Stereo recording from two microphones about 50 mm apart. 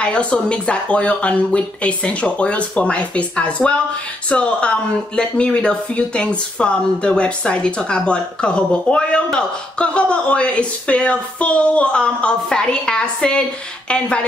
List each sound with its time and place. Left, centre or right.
0.0 s speech: left